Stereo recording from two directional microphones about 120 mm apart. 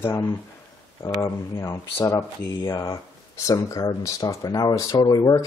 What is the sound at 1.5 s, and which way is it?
Speech, 20° left (ahead or behind).